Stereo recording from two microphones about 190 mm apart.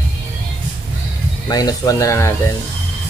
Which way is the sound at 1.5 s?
20° left (ahead or behind).